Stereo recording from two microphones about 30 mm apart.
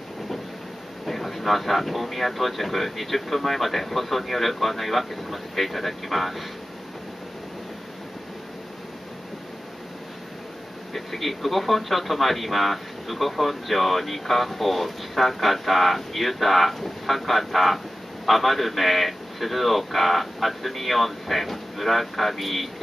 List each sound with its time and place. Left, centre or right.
1.0 s speech: centre
10.9 s speech: centre